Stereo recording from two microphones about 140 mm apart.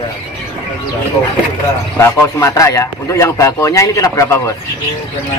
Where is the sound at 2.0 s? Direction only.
20° left (ahead or behind).